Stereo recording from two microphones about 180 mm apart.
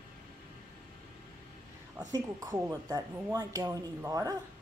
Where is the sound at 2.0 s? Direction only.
20° right (ahead or behind).